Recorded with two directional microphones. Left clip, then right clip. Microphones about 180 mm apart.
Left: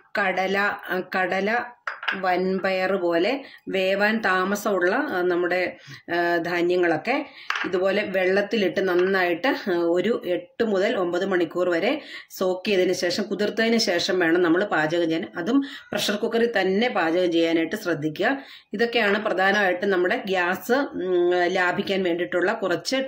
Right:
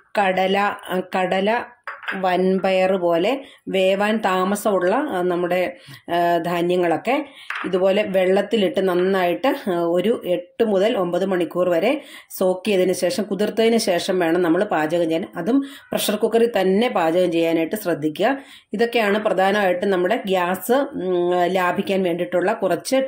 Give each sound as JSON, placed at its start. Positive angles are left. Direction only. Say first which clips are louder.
{"t": 0.1, "sound": "speech", "louder": "right 5 dB", "side_deg": -30}